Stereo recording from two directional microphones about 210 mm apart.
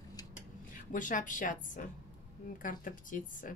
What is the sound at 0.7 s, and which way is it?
A woman's voice, 40° left (ahead or behind).